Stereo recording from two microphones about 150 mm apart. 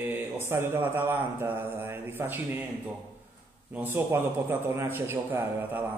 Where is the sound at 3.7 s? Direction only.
15° right (ahead or behind).